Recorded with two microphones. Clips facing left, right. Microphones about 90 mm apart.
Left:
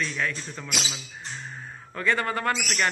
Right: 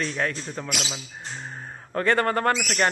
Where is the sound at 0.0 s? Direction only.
40° right (ahead or behind).